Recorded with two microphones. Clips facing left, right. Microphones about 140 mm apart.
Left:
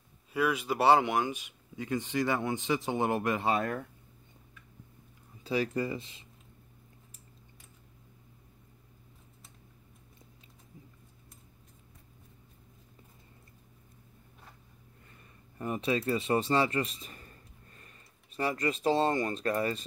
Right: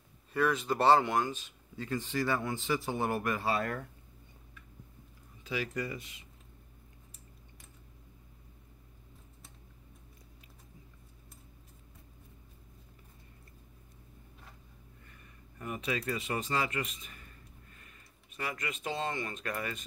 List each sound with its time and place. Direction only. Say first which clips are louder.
0.3 s speech: even; 10° left (ahead or behind)
5.4 s speech: left 5 dB; 35° left (ahead or behind)
15.5 s speech: left 5 dB; 30° left (ahead or behind)